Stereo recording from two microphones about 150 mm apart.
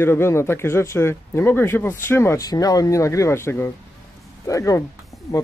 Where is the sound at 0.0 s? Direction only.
15° left (ahead or behind).